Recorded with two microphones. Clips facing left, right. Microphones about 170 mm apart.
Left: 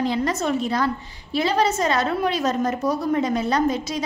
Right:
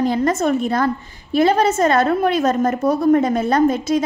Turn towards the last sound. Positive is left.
turn(degrees=-50)  # may be behind; listen again after turning